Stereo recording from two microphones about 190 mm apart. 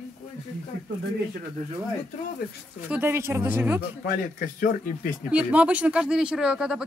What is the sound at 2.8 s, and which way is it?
Speech, 10° right (ahead or behind).